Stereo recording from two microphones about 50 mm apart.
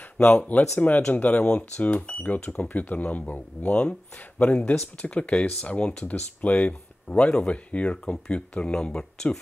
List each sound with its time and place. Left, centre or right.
0.4 s speech: left
6.7 s speech: left